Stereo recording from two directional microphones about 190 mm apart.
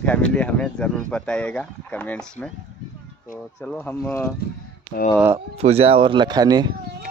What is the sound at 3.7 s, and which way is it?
Speech, 5° left (ahead or behind).